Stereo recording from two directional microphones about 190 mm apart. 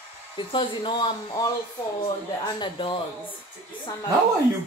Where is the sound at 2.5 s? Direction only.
25° left (ahead or behind).